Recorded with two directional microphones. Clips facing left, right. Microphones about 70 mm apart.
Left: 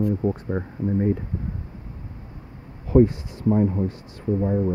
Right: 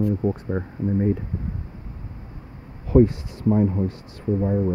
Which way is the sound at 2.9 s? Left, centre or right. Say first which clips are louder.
Even; left.